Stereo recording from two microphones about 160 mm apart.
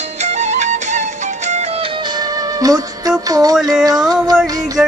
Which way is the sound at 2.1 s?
20° right (ahead or behind).